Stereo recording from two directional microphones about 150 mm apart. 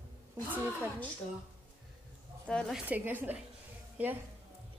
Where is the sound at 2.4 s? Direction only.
5° left (ahead or behind).